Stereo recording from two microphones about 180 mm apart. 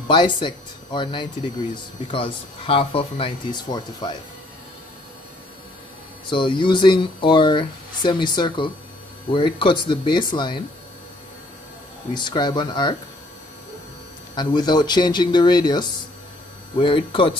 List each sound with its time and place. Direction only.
0.1 s speech: 25° left (ahead or behind)
6.2 s speech: 25° left (ahead or behind)
12.1 s speech: 25° left (ahead or behind)
14.3 s speech: 25° left (ahead or behind)